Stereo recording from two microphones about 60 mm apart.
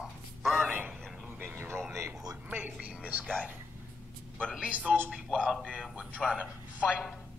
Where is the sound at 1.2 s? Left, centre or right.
Right.